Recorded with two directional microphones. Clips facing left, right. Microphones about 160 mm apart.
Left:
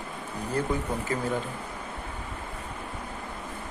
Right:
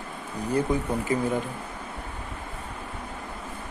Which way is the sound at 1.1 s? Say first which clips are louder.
Right 5 dB; 15° right (ahead or behind).